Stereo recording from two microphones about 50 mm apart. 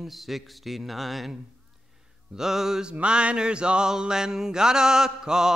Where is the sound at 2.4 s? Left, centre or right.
Centre.